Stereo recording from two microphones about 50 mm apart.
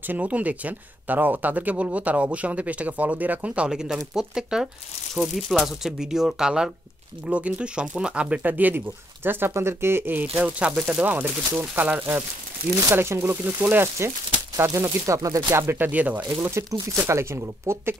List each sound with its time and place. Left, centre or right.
0.0 s speech: right
3.6 s speech: centre
5.1 s speech: centre
7.2 s speech: right
8.4 s speech: right
10.4 s speech: right
11.1 s speech: right
12.9 s speech: right
13.6 s speech: right
14.7 s speech: right
15.6 s speech: right
15.9 s speech: right
16.3 s speech: right